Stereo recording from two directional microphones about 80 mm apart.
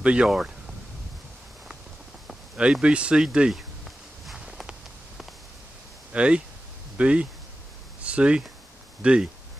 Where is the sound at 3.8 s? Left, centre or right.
Centre.